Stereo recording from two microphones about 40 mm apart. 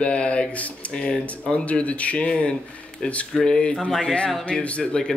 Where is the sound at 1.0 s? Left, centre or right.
Left.